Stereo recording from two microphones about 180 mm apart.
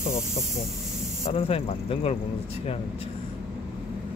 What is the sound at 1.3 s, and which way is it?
Speech, 35° left (ahead or behind).